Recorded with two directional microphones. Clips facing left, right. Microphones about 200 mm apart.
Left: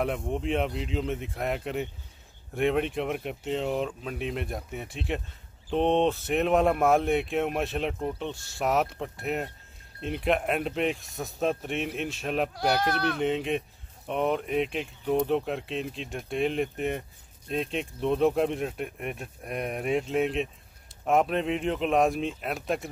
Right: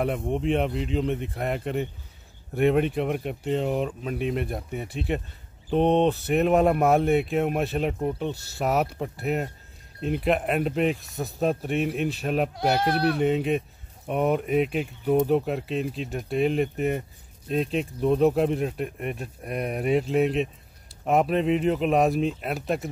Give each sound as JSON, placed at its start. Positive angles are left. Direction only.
{"t": 0.3, "sound": "speech", "side_deg": 0}
{"t": 12.8, "sound": "speech", "side_deg": -35}
{"t": 13.2, "sound": "speech", "side_deg": 0}